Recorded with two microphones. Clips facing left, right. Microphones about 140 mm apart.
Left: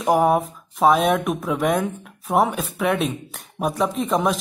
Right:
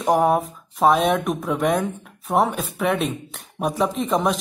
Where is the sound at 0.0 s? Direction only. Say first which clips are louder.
Left 1 dB; 5° left (ahead or behind).